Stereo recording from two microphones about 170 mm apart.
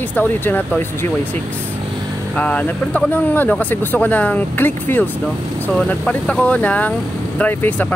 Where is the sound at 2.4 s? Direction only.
10° left (ahead or behind).